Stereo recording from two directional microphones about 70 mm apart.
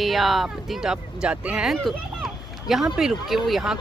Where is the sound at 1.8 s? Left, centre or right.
Centre.